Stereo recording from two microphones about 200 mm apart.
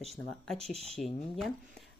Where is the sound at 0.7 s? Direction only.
30° right (ahead or behind).